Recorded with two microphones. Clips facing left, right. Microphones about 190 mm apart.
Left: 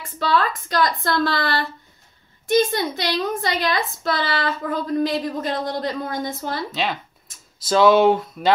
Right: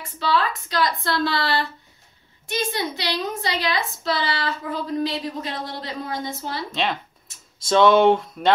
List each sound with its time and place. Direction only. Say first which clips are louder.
0.2 s a woman's voice: left 2 dB; 50° left (ahead or behind)
6.7 s speech: even; centre (ahead or behind)